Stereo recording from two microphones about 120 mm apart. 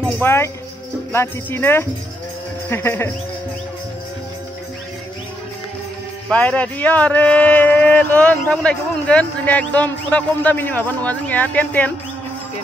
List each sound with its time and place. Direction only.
0.2 s speech: 20° left (ahead or behind)
6.3 s speech: 10° left (ahead or behind)